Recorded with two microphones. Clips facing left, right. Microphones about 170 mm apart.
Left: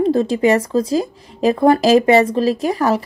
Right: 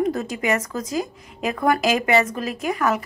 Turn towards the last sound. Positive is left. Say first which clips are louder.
# left 5 dB
turn(degrees=35)  # may be behind; listen again after turning